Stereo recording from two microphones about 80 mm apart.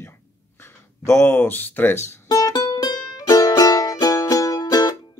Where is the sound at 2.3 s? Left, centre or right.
Left.